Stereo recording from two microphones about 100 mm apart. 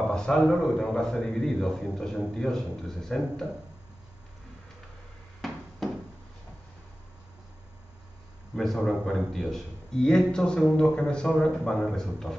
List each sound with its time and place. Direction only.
0.1 s a man's voice: 5° left (ahead or behind)
5.4 s a sound: centre (ahead or behind)
8.5 s a man's voice: 5° left (ahead or behind)